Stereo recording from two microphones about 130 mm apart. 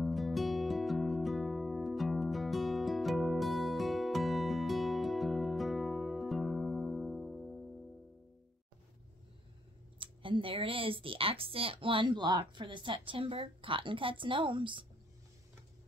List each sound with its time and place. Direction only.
0.0 s music: centre (ahead or behind)
9.9 s speech: 40° right (ahead or behind)